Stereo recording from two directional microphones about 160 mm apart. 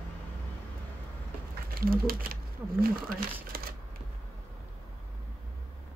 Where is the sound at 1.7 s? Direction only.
65° right (ahead or behind).